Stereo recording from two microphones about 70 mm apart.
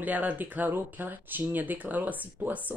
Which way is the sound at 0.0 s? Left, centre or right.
Right.